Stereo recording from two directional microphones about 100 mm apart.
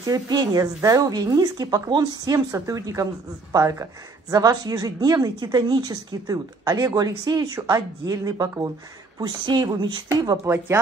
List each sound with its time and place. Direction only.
0.0 s a woman's voice: 40° right (ahead or behind)